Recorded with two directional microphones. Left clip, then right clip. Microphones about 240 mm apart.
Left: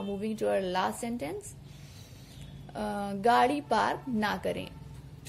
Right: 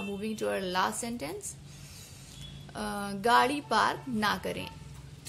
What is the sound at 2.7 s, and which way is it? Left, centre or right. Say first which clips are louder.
A woman's voice: left 2 dB; right.